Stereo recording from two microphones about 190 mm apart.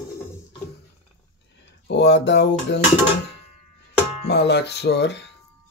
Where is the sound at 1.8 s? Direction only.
65° left (ahead or behind).